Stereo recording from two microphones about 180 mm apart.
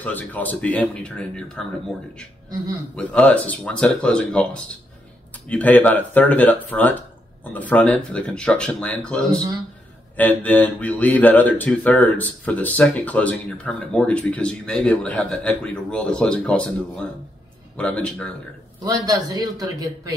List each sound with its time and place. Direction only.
0.0 s speech: 10° left (ahead or behind)
3.0 s speech: 5° left (ahead or behind)
5.5 s speech: 10° left (ahead or behind)
18.9 s a man's voice: 20° right (ahead or behind)